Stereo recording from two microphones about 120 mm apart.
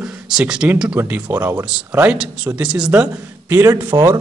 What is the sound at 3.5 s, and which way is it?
Speech, 20° right (ahead or behind).